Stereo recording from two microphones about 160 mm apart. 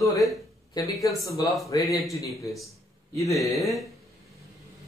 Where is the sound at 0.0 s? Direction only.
20° left (ahead or behind).